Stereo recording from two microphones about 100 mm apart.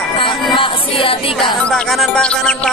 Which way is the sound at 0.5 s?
60° left (ahead or behind).